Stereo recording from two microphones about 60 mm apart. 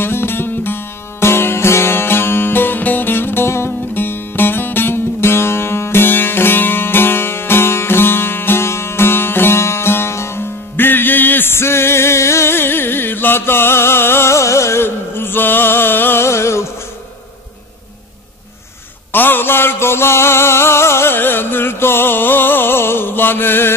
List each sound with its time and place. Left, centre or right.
0.0 s music: left
19.1 s music: left